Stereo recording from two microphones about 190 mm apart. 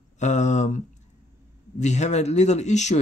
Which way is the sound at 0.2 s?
40° left (ahead or behind).